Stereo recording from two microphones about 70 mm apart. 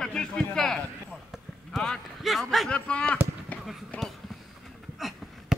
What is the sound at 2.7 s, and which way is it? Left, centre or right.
Speech, centre.